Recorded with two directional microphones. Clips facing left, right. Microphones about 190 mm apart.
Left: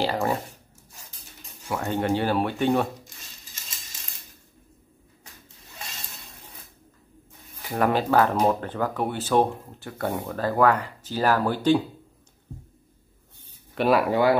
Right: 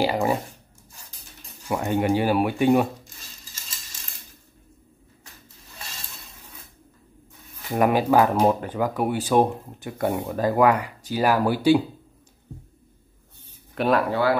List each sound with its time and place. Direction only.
0.0 s speech: 10° right (ahead or behind)
1.7 s speech: 15° right (ahead or behind)
7.7 s speech: 15° right (ahead or behind)
13.7 s speech: centre (ahead or behind)
14.1 s speech: 20° left (ahead or behind)